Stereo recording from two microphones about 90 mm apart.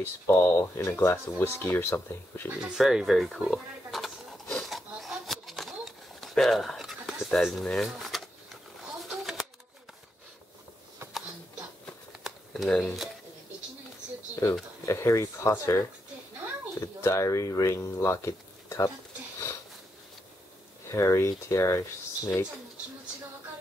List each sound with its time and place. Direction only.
0.0 s speech: 30° left (ahead or behind)
2.6 s speech: 5° right (ahead or behind)
3.4 s pig: centre (ahead or behind)
4.6 s a sound: centre (ahead or behind)
7.6 s speech: 5° left (ahead or behind)
9.0 s a sound: centre (ahead or behind)
12.2 s shuffling cards: 5° right (ahead or behind)
12.6 s speech: 5° left (ahead or behind)
14.4 s speech: 30° left (ahead or behind)
16.8 s speech: 35° left (ahead or behind)
20.9 s speech: 35° left (ahead or behind)